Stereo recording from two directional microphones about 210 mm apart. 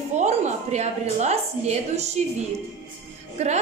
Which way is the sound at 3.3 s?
30° right (ahead or behind).